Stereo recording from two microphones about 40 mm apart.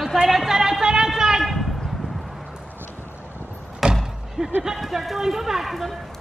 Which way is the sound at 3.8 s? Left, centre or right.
Centre.